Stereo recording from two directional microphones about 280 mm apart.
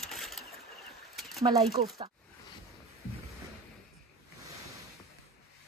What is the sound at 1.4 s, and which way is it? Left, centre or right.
Speech, centre.